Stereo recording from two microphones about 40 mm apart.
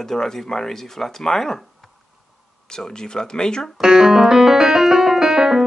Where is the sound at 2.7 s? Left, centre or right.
Centre.